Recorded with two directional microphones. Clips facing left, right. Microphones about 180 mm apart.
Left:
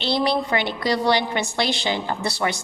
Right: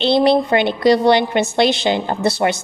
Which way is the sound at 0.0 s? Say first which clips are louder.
Right 8 dB; 20° right (ahead or behind).